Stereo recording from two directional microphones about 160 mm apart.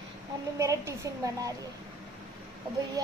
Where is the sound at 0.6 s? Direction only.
20° right (ahead or behind).